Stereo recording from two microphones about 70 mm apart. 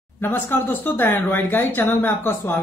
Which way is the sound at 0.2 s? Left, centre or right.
Left.